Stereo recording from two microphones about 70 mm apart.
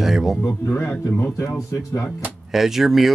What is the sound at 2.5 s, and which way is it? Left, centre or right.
Speech, centre.